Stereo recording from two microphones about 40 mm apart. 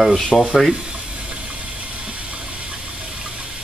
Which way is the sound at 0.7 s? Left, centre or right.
Right.